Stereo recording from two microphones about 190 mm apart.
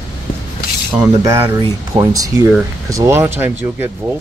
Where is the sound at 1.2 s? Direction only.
20° right (ahead or behind).